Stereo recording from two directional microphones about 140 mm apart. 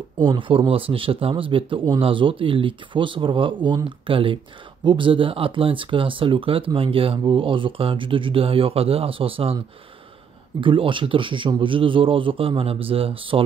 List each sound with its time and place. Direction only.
0.2 s speech: 35° right (ahead or behind)
10.6 s speech: 35° right (ahead or behind)